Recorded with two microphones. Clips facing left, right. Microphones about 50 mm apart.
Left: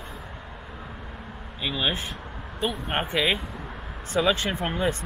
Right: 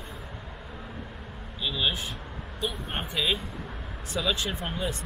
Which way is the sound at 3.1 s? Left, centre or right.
Left.